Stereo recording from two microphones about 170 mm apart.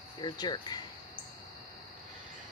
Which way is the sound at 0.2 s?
25° left (ahead or behind).